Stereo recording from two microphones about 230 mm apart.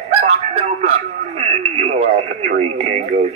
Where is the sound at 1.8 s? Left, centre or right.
Right.